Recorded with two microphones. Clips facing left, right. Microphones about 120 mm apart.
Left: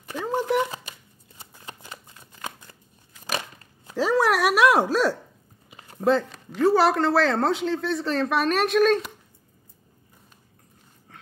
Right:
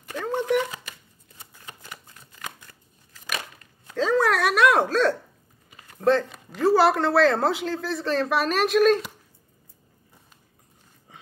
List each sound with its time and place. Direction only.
0.2 s chopping: 10° left (ahead or behind)
1.8 s shuffling cards: 25° left (ahead or behind)
3.9 s dog: 10° left (ahead or behind)
5.7 s a sound: 25° left (ahead or behind)
6.0 s speech: centre (ahead or behind)